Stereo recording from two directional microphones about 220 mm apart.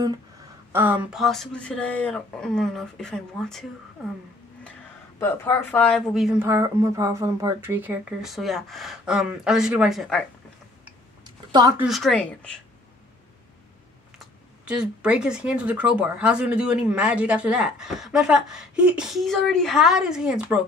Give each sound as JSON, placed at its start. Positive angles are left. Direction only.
{"t": 0.7, "sound": "speech", "side_deg": -5}
{"t": 5.2, "sound": "speech", "side_deg": 10}
{"t": 6.4, "sound": "speech", "side_deg": -15}
{"t": 11.2, "sound": "a sound", "side_deg": -20}
{"t": 11.8, "sound": "speech", "side_deg": 0}
{"t": 14.1, "sound": "speech", "side_deg": -5}